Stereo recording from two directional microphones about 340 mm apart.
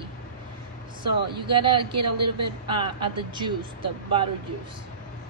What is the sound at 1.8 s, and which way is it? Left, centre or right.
Speech, right.